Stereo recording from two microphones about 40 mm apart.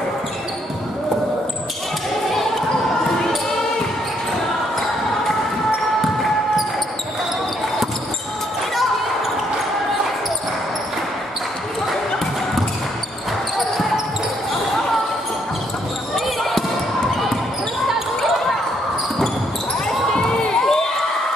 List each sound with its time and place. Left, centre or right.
20.1 s crowd: centre